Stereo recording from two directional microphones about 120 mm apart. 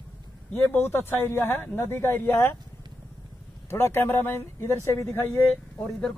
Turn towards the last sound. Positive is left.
turn(degrees=5)  # may be behind; listen again after turning